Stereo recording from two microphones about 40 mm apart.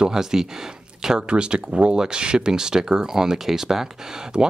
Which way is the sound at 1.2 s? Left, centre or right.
Right.